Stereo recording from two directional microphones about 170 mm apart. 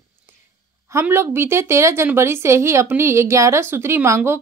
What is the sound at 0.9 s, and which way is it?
A woman's voice, 15° right (ahead or behind).